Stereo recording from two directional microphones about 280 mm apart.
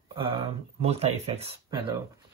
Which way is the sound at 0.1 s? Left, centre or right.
Centre.